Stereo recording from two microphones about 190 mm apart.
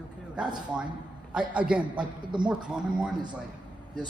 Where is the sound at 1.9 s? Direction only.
25° right (ahead or behind).